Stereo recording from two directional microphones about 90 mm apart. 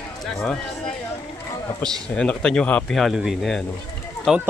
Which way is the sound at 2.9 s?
Centre (ahead or behind).